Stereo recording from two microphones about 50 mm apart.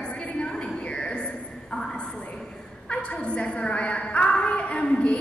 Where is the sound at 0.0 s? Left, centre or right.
Left.